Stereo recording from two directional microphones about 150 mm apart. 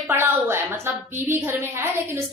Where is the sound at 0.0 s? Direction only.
15° right (ahead or behind).